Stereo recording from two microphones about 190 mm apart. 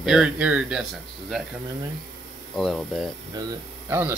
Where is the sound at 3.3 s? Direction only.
15° right (ahead or behind).